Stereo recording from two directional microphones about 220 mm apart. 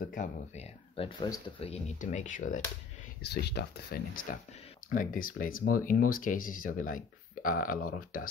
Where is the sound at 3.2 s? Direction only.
50° left (ahead or behind).